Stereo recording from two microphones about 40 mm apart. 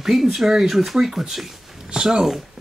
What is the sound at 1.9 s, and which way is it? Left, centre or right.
Speech, centre.